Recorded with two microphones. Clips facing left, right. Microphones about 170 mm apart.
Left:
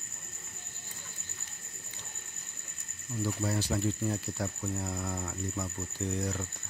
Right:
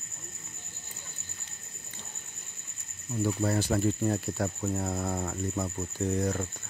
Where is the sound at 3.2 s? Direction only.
50° right (ahead or behind).